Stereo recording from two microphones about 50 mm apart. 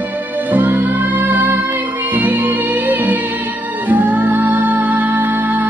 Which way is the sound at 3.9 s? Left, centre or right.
Right.